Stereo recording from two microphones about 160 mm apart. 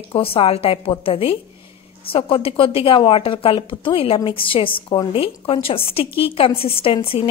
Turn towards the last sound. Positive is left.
turn(degrees=35)  # may be behind; listen again after turning